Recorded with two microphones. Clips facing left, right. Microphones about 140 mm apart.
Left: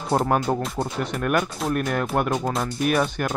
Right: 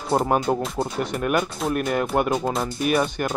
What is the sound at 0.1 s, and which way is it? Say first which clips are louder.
Speech: right 1 dB; 5° right (ahead or behind).